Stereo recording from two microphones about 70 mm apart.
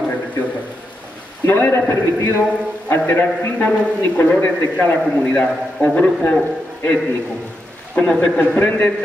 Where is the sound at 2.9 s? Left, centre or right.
Left.